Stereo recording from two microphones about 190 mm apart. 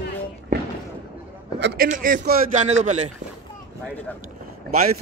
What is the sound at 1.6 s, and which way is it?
Speech, 60° right (ahead or behind).